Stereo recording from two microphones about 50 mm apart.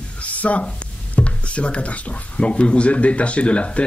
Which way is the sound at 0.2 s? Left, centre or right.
Left.